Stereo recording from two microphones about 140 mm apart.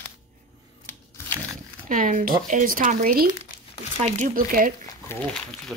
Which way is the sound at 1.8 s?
70° right (ahead or behind).